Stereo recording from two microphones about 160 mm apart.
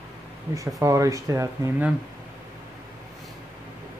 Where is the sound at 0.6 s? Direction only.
20° right (ahead or behind).